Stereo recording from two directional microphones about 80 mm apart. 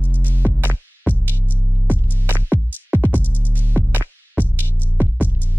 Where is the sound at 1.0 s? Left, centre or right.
Right.